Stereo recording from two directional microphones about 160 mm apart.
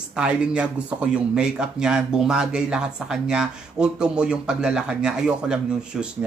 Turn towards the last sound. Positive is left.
turn(degrees=-5)  # may be behind; listen again after turning